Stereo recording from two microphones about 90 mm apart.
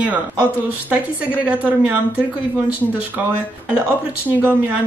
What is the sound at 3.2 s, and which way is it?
Speech, 20° right (ahead or behind).